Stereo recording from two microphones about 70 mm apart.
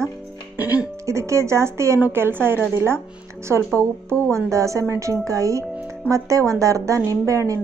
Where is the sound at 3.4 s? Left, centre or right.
Right.